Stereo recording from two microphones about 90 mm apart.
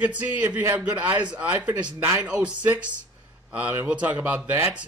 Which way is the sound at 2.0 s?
25° right (ahead or behind).